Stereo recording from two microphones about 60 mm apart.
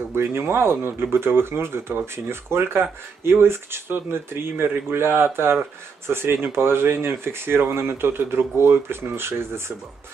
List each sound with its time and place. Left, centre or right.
0.1 s speech: right